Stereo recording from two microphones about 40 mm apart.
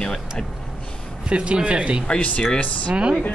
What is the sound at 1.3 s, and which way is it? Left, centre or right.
Speech, right.